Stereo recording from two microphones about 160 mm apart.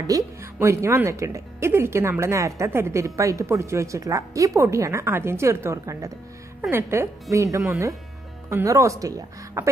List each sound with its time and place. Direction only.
0.0 s a woman's voice: 20° right (ahead or behind)